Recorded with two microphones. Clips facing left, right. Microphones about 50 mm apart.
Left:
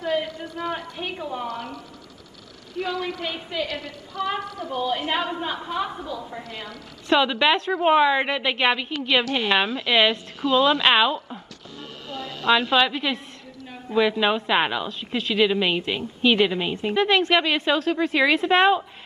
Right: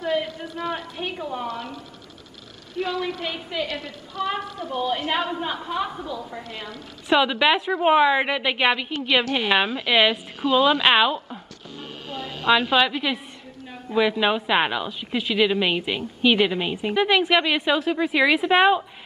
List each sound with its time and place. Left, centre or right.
0.7 s a woman's voice: centre
2.8 s a woman's voice: centre
4.4 s a woman's voice: right
5.1 s a woman's voice: centre
12.1 s a sound: right
12.4 s a woman's voice: centre